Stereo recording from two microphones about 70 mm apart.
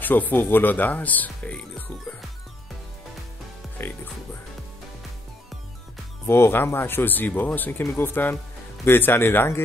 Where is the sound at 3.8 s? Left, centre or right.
Left.